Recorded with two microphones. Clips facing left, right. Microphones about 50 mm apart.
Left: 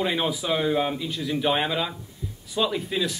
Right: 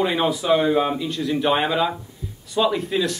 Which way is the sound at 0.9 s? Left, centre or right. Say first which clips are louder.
Right 4 dB; centre.